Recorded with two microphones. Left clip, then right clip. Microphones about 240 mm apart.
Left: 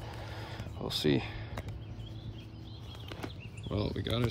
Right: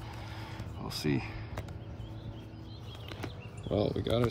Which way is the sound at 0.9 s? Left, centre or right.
Centre.